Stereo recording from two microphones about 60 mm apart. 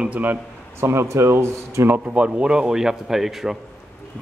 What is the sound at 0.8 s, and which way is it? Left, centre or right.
Speech, right.